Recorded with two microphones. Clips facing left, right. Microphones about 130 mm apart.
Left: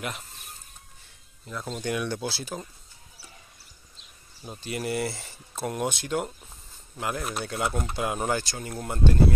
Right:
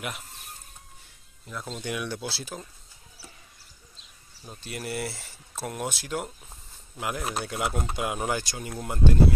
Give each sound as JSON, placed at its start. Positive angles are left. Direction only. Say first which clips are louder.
{"t": 1.5, "sound": "speech", "louder": "left 3 dB", "side_deg": 0}
{"t": 4.6, "sound": "speech", "louder": "left 4 dB", "side_deg": 0}